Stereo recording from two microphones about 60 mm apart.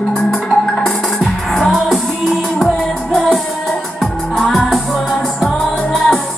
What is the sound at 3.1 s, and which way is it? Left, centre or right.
Music, centre.